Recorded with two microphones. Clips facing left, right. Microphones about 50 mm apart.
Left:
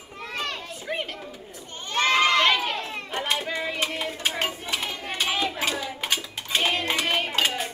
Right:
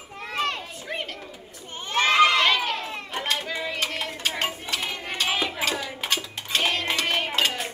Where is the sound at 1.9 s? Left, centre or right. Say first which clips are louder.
Right 2 dB; centre.